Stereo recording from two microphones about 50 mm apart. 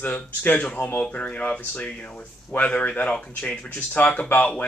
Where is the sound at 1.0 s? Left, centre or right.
Left.